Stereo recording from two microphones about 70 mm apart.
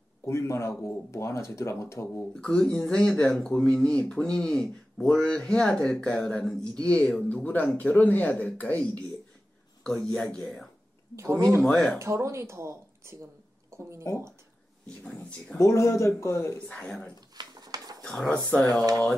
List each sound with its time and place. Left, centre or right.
0.2 s speech: left
2.3 s speech: centre
9.8 s speech: centre
11.1 s speech: right
15.6 s speech: left
16.5 s speech: centre
17.4 s a sound: right
18.0 s speech: centre
18.7 s speech: right